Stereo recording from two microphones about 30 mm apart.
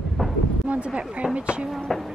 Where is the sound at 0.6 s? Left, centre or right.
Right.